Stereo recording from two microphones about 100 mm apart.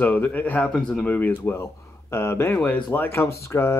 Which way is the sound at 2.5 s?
15° left (ahead or behind).